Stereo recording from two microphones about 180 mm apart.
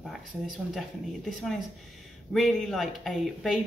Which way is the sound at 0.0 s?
Centre (ahead or behind).